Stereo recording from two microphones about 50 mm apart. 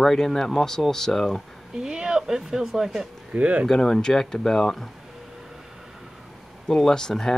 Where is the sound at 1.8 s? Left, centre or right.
Centre.